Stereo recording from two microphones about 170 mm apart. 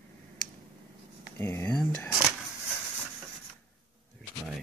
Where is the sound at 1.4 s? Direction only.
15° left (ahead or behind).